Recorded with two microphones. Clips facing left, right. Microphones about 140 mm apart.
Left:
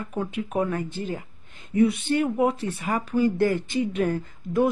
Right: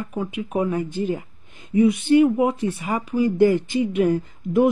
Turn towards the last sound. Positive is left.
turn(degrees=-15)  # may be behind; listen again after turning